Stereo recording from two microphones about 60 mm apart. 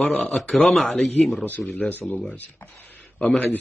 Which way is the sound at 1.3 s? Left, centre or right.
Left.